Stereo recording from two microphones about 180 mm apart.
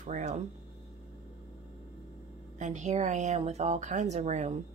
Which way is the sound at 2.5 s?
40° right (ahead or behind).